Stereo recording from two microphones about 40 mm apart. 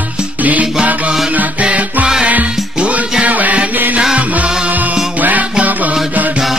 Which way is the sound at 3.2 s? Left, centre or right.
Right.